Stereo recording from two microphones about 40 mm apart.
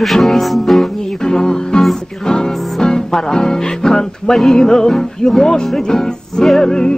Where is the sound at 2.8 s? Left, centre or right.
Centre.